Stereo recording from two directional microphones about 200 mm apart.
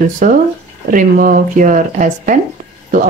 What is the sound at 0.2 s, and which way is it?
Speech, 45° right (ahead or behind).